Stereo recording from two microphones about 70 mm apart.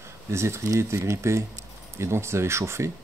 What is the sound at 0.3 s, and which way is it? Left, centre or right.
Speech, right.